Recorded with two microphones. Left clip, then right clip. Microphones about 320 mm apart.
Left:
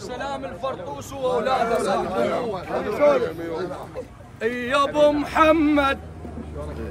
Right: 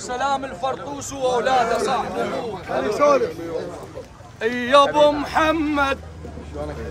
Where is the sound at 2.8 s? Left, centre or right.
Right.